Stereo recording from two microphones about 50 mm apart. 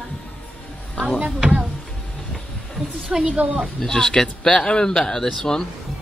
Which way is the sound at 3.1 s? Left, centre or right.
Centre.